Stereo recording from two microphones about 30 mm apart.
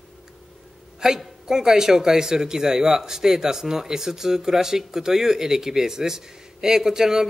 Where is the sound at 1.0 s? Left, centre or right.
Right.